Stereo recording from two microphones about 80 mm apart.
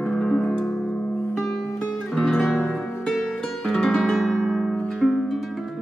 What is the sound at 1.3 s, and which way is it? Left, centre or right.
Music, centre.